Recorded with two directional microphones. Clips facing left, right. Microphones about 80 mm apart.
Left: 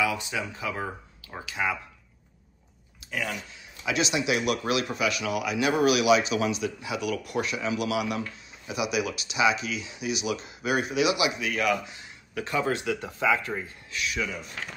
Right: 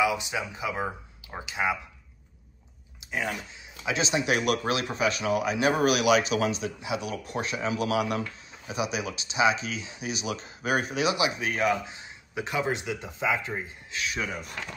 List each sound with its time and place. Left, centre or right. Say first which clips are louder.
0.0 s speech: right 2 dB; centre
3.0 s a sound: right 1 dB; right
3.8 s speech: left 1 dB; right
13.9 s speech: left 1 dB; right